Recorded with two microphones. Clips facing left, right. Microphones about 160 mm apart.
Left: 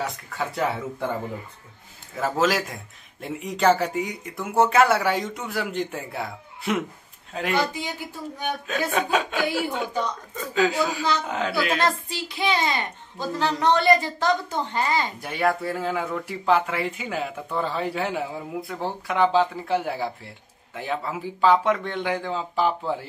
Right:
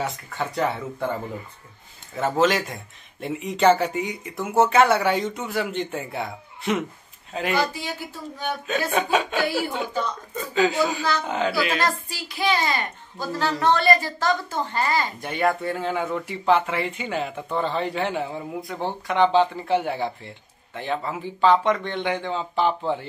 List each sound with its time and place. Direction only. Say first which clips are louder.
0.0 s speech: right 1 dB; centre (ahead or behind)
2.1 s speech: right 2 dB; centre (ahead or behind)
11.8 s a woman's voice: left 1 dB; 25° left (ahead or behind)
15.1 s speech: right 1 dB; centre (ahead or behind)